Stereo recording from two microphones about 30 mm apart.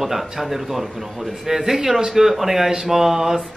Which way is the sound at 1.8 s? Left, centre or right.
Right.